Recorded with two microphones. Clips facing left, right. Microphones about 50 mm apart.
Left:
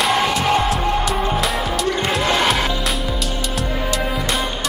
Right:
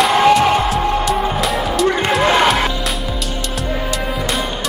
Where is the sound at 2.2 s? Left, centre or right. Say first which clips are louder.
Right 6 dB; right.